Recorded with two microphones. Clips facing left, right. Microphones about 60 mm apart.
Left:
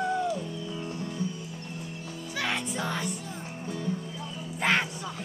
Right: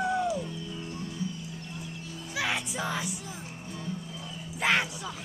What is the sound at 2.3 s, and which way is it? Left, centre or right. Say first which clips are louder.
Music: even; centre.